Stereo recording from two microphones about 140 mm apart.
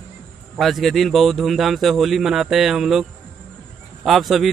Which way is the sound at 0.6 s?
Centre (ahead or behind).